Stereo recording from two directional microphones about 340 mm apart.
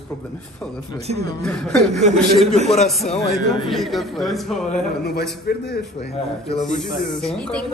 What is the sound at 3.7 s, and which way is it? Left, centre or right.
Speech, centre.